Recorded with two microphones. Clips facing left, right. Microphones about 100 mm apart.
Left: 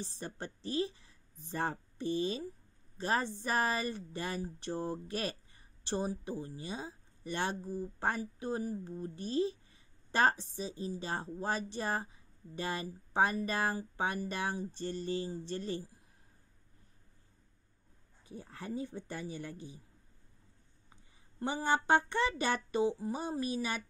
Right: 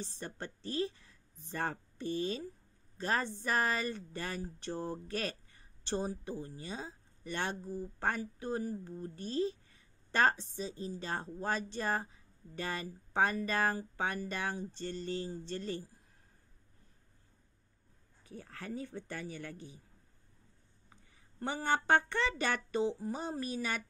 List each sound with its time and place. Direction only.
0.0 s speech: 15° left (ahead or behind)
18.2 s speech: 15° left (ahead or behind)
20.9 s speech: 15° left (ahead or behind)